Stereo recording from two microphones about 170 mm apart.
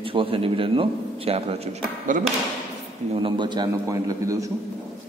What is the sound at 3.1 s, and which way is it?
A man's voice, 30° right (ahead or behind).